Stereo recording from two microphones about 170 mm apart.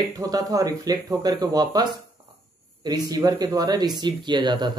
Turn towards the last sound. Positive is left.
turn(degrees=-25)  # may be behind; listen again after turning